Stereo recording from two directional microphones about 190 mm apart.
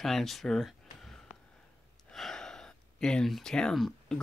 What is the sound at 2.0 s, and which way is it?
Gasp, centre (ahead or behind).